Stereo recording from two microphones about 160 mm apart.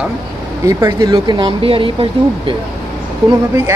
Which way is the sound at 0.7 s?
20° right (ahead or behind).